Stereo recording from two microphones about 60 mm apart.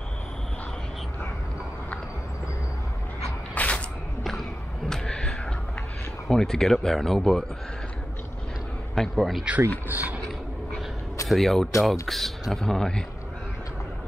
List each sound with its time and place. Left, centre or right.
3.5 s a sound: left
4.2 s a sound: centre
6.2 s speech: centre
8.9 s speech: centre
9.8 s speech: right
11.2 s speech: centre